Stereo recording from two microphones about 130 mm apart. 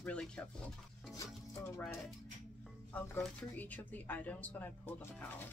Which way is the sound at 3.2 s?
10° left (ahead or behind).